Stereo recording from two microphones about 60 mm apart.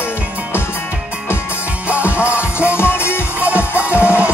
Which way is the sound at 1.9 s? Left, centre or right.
Right.